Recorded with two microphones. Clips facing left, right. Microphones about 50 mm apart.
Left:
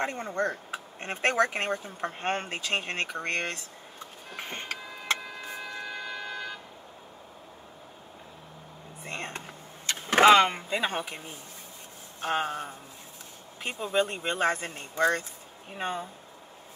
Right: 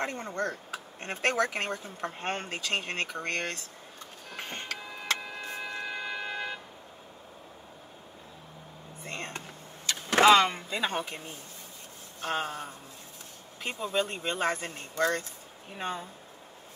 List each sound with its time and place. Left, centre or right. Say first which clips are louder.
0.0 s speech: left 3 dB; centre
4.3 s music: left 1 dB; centre
5.2 s a sound: right 1 dB; centre
9.0 s a sound: left 1 dB; left
9.8 s vehicle: left 2 dB; left
12.2 s speech: left 3 dB; left